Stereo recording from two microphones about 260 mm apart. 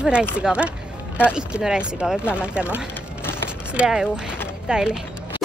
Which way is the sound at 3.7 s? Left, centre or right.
Centre.